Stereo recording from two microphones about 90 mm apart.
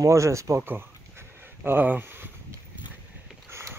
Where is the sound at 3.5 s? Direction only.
30° right (ahead or behind).